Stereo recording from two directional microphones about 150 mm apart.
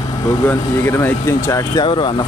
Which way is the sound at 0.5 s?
15° left (ahead or behind).